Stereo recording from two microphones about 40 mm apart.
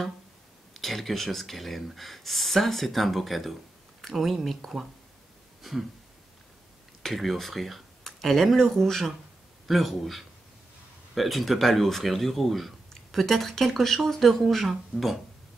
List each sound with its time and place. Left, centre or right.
0.7 s speech: centre
5.6 s a sound: centre
7.0 s speech: centre
9.7 s speech: centre